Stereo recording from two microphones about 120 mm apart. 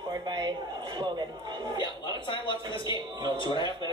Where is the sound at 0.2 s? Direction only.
40° right (ahead or behind).